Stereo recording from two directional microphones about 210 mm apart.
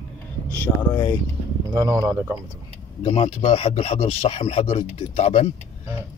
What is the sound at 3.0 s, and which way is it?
Speech, 25° left (ahead or behind).